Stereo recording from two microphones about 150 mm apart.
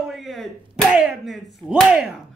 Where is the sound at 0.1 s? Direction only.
Centre (ahead or behind).